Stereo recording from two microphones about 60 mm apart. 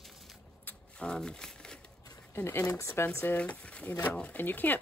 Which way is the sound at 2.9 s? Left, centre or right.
Left.